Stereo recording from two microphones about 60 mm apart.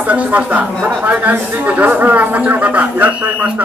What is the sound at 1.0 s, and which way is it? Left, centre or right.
Speech, right.